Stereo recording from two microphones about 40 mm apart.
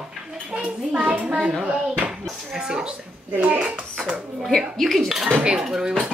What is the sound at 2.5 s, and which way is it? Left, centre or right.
Speech, centre.